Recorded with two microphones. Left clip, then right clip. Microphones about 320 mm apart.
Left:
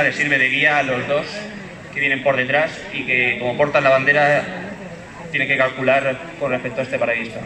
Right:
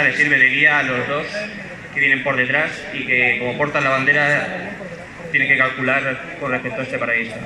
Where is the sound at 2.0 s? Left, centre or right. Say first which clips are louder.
Right 1 dB; left.